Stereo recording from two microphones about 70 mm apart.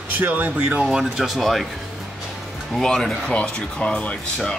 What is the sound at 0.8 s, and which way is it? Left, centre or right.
Speech, centre.